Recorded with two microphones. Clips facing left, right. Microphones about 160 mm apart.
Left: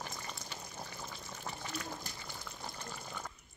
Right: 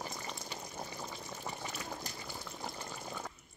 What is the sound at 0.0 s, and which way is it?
Water, 15° right (ahead or behind).